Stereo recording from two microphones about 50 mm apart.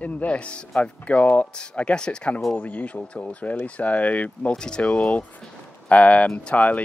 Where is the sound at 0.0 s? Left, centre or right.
Left.